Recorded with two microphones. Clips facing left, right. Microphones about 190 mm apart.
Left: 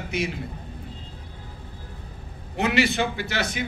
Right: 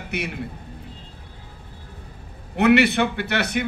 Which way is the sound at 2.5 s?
60° right (ahead or behind).